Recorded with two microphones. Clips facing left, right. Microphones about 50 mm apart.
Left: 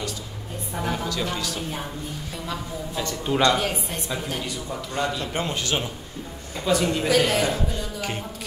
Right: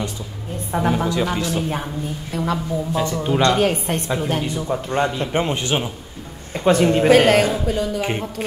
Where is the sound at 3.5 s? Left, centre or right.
Right.